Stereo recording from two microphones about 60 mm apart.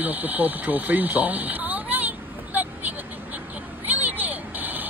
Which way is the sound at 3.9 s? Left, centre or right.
Right.